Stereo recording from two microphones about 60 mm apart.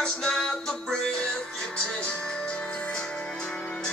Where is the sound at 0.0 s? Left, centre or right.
Centre.